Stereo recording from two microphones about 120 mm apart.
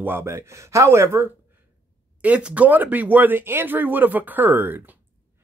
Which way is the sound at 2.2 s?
10° right (ahead or behind).